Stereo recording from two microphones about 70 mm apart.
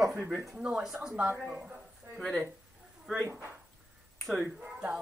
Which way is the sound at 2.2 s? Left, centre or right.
Centre.